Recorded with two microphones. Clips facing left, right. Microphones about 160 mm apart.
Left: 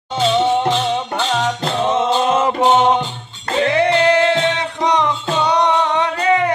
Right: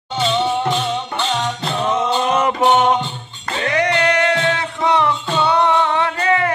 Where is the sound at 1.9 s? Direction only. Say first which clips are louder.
Left 2 dB; 25° left (ahead or behind).